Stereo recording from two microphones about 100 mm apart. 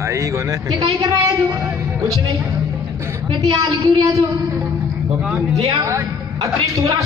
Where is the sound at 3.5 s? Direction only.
45° right (ahead or behind).